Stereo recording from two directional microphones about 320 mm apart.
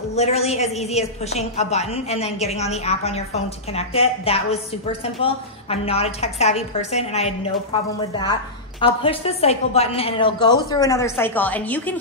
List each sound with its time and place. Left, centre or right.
0.1 s a woman's voice: centre
8.8 s a woman's voice: centre